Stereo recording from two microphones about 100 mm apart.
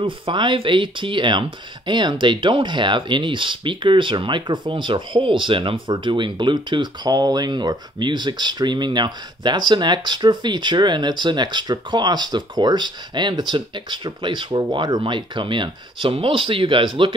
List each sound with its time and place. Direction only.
0.0 s speech: 55° right (ahead or behind)